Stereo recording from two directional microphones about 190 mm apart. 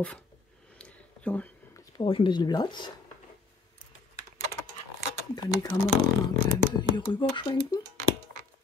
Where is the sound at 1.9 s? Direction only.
25° left (ahead or behind).